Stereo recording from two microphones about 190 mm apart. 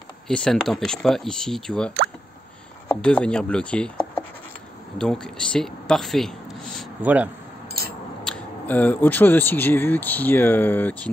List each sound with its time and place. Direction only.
0.3 s speech: 5° left (ahead or behind)
7.8 s scissors: 55° right (ahead or behind)
8.2 s speech: 5° left (ahead or behind)